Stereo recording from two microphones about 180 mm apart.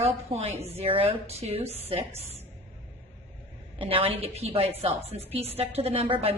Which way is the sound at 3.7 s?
30° right (ahead or behind).